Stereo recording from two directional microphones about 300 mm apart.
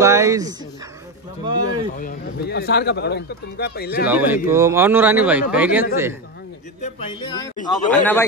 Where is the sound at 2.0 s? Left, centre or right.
Left.